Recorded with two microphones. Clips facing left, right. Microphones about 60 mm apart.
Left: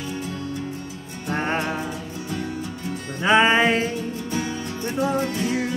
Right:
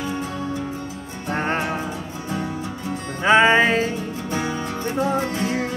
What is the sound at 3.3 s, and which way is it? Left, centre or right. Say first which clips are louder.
Music: right 2 dB; centre.